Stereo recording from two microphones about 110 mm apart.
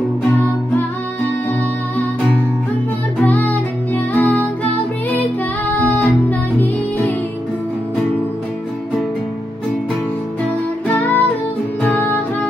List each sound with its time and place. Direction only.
3.3 s music: 15° left (ahead or behind)
5.8 s music: 10° left (ahead or behind)
10.9 s music: 15° left (ahead or behind)